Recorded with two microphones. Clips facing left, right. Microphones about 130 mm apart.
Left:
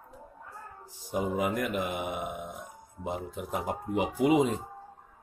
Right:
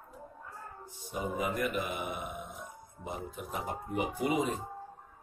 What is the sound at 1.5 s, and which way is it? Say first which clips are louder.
Speech: left 2 dB; 85° left.